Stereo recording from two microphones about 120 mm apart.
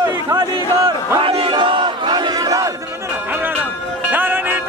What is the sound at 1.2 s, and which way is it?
Battle cry, 50° right (ahead or behind).